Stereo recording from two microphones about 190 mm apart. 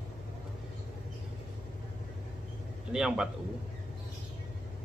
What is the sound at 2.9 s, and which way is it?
Speech, 5° right (ahead or behind).